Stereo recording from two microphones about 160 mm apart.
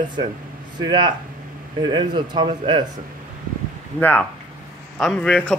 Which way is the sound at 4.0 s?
10° left (ahead or behind).